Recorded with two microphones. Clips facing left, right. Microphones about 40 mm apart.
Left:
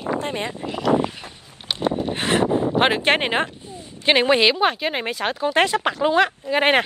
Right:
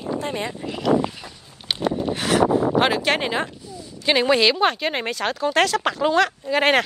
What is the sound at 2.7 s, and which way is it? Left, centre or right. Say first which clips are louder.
Speech: left 1 dB; left.